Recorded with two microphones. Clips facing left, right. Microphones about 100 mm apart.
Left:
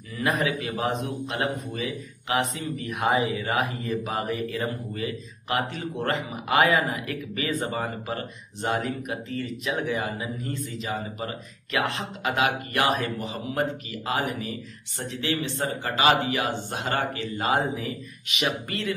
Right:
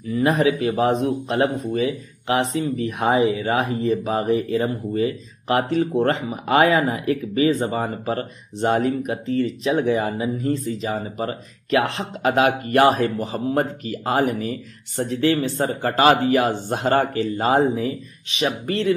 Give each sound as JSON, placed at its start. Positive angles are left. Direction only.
{"t": 0.1, "sound": "speech", "side_deg": -35}